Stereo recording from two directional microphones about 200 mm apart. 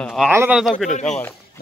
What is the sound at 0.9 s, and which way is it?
Speech, 35° left (ahead or behind).